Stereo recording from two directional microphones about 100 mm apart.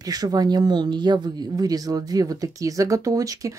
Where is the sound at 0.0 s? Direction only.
40° right (ahead or behind).